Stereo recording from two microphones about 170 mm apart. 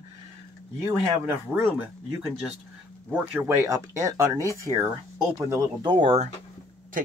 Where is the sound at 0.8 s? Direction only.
15° right (ahead or behind).